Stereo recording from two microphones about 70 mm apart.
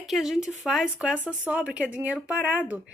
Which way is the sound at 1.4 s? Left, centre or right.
Centre.